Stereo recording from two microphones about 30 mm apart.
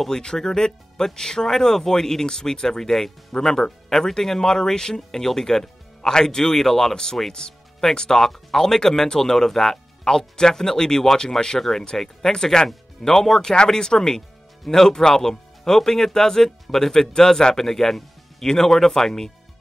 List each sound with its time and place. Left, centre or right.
0.1 s speech: left
2.9 s speech: centre